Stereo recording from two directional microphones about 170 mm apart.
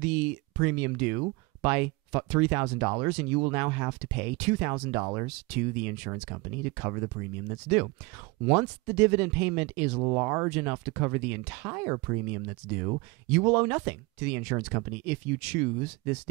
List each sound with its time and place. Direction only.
0.0 s speech: 10° right (ahead or behind)
9.9 s speech: 20° right (ahead or behind)